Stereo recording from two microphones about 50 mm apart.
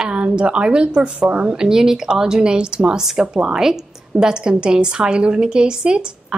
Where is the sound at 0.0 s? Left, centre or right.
Right.